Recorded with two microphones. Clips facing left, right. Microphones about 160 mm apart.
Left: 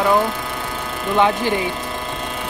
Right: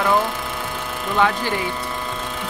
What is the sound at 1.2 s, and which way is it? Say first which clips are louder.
Speech: left 3 dB; 20° left (ahead or behind).